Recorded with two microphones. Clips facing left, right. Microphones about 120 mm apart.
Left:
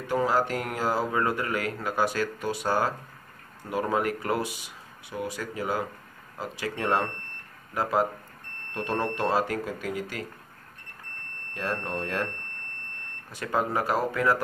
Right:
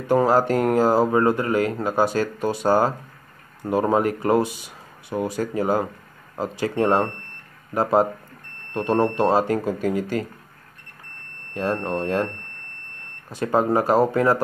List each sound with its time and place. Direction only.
0.1 s speech: 40° right (ahead or behind)
11.5 s speech: 25° right (ahead or behind)
13.3 s speech: 30° right (ahead or behind)